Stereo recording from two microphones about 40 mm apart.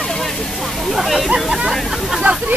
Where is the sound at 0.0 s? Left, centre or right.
Centre.